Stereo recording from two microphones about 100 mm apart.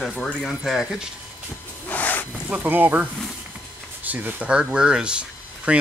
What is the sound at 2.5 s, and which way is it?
Speech, 20° right (ahead or behind).